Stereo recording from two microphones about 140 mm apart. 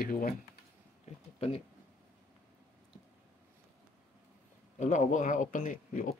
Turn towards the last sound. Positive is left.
turn(degrees=70)  # may be behind; listen again after turning